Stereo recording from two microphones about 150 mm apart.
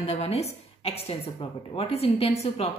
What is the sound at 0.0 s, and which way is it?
A woman's voice, 45° left (ahead or behind).